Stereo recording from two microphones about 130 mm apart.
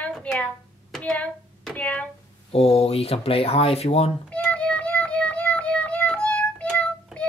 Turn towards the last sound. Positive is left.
turn(degrees=10)  # may be behind; listen again after turning